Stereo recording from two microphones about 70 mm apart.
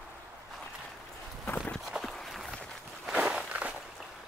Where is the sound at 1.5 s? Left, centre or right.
Centre.